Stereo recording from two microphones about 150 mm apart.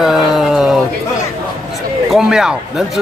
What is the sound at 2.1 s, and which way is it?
Speech, 5° right (ahead or behind).